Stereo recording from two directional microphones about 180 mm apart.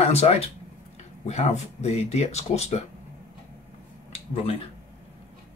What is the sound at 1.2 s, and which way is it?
Speech, 35° left (ahead or behind).